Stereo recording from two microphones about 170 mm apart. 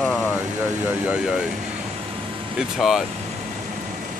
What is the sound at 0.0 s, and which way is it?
Vehicle, 5° left (ahead or behind).